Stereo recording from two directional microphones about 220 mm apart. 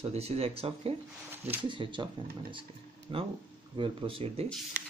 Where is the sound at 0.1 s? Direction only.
30° right (ahead or behind).